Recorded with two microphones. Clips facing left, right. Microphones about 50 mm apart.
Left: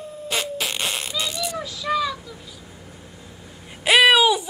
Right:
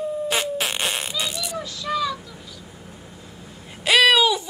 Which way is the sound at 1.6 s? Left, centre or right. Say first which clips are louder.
Left 1 dB; centre.